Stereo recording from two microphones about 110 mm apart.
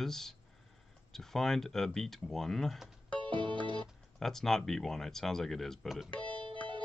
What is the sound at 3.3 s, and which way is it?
Music, 45° right (ahead or behind).